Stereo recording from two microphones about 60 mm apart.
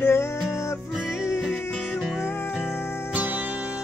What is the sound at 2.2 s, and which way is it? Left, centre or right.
Music, left.